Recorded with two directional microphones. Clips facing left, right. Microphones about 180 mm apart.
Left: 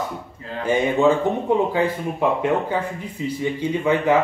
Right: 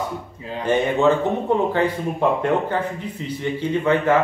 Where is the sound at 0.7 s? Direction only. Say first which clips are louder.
Even; 10° left (ahead or behind).